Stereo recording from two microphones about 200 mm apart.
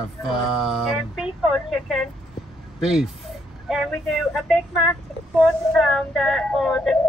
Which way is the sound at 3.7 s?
Centre (ahead or behind).